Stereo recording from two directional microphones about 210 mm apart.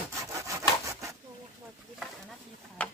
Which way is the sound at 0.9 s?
15° right (ahead or behind).